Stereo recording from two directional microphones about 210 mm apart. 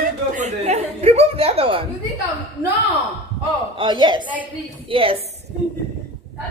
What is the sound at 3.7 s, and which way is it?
A man's voice, 20° right (ahead or behind).